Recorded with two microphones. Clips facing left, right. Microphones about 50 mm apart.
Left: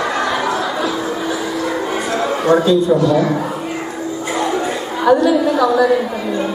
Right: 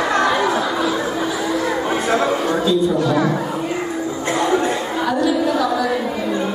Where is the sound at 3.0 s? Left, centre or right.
Centre.